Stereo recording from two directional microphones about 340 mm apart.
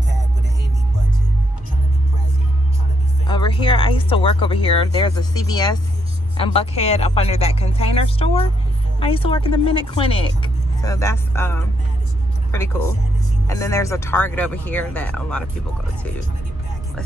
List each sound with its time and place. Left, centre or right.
3.3 s speech: centre